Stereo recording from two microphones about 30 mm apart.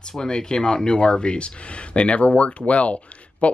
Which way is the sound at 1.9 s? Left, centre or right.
Left.